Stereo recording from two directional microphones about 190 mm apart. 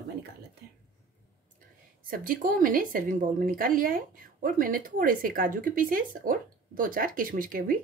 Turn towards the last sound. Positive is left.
turn(degrees=-45)  # may be behind; listen again after turning